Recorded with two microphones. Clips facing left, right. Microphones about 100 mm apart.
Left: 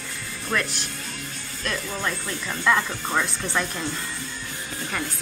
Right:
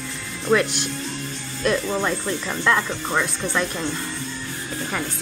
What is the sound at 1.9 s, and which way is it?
Speech, 20° right (ahead or behind).